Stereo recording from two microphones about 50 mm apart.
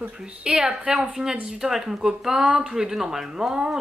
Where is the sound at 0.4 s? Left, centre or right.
Centre.